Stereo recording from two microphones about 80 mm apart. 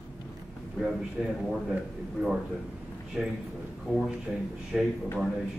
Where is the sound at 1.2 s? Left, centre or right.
Centre.